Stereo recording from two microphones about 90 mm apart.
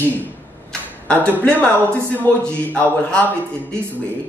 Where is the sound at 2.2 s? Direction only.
15° left (ahead or behind).